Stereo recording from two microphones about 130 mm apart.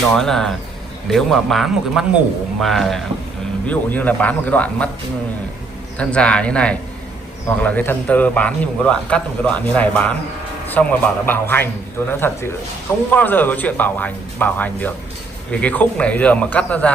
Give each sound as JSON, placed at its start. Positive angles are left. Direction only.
{"t": 0.1, "sound": "a man's voice", "side_deg": 5}
{"t": 3.6, "sound": "a man's voice", "side_deg": 10}
{"t": 5.9, "sound": "a man's voice", "side_deg": 10}